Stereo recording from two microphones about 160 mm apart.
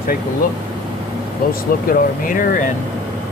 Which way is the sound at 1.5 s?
60° left (ahead or behind).